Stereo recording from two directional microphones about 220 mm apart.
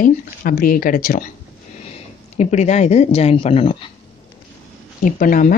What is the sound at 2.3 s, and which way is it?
Speech, 30° left (ahead or behind).